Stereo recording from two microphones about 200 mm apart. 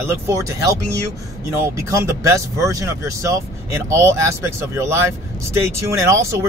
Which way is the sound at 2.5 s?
15° right (ahead or behind).